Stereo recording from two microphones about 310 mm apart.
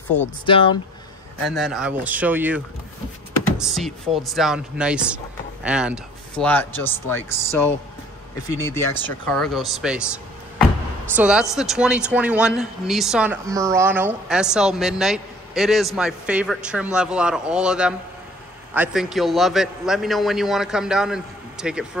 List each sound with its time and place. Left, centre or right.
0.5 s speech: centre
1.4 s a man's voice: centre
11.1 s a man's voice: centre